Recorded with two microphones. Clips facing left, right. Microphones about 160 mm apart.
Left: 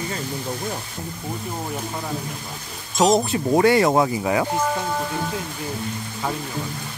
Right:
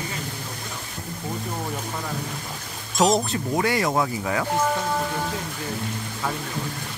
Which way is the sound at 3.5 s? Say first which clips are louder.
Left 7 dB; 30° left (ahead or behind).